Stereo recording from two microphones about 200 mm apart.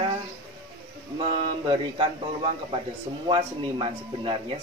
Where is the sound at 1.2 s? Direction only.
25° right (ahead or behind).